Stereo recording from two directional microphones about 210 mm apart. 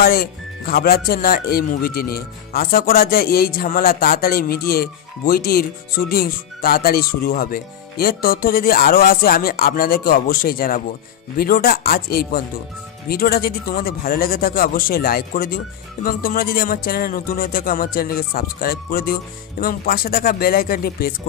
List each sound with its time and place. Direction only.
0.0 s speech: 45° left (ahead or behind)